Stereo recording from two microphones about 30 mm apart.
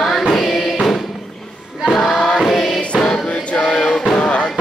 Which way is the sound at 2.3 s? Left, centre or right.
Centre.